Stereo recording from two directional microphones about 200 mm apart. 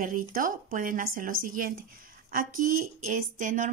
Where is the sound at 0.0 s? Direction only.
45° right (ahead or behind).